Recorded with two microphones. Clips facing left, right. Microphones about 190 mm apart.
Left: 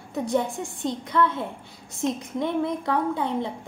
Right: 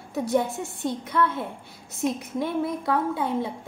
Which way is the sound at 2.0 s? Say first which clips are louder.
Even; 5° right (ahead or behind).